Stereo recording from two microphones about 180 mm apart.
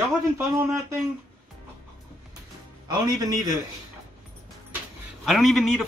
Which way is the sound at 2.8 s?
20° right (ahead or behind).